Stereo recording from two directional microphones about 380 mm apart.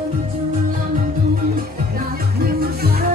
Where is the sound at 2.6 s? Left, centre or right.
Right.